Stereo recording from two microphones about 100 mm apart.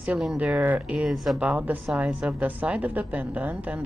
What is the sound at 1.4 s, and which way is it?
A woman's voice, 15° right (ahead or behind).